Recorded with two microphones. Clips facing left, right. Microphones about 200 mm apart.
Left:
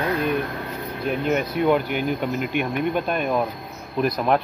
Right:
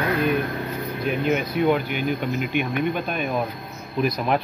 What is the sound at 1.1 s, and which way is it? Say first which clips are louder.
Speech: left 1 dB; 5° right (ahead or behind).